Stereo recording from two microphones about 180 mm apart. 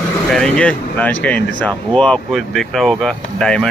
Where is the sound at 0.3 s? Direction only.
5° left (ahead or behind).